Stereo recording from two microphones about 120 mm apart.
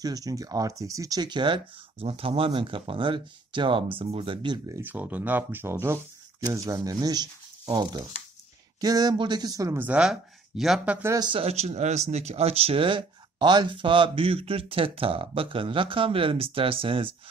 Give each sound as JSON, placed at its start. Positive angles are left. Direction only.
{"t": 0.0, "sound": "speech", "side_deg": -30}
{"t": 4.6, "sound": "speech", "side_deg": -20}
{"t": 8.8, "sound": "speech", "side_deg": -30}
{"t": 9.8, "sound": "speech", "side_deg": -10}
{"t": 11.1, "sound": "speech", "side_deg": -40}
{"t": 11.4, "sound": "speech", "side_deg": -65}